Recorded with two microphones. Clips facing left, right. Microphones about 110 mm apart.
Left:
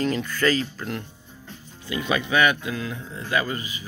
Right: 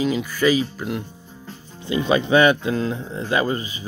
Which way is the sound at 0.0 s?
10° right (ahead or behind).